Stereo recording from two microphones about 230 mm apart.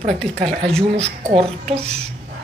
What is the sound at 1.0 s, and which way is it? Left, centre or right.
Speech, right.